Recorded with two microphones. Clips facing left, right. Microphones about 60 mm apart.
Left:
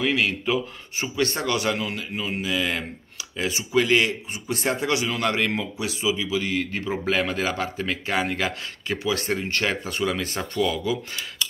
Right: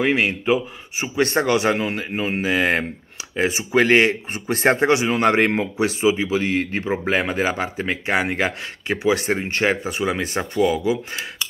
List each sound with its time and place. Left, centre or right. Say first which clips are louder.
0.0 s a man's voice: right 4 dB; right